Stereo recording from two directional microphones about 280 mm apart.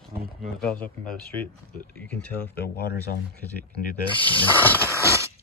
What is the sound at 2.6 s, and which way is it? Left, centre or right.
Speech, left.